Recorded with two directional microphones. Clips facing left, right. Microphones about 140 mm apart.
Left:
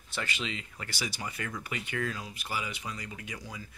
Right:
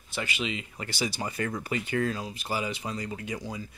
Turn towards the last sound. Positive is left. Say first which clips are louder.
# right 7 dB
turn(degrees=-25)  # may be behind; listen again after turning